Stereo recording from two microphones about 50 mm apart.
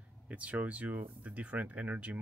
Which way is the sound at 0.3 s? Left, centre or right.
Right.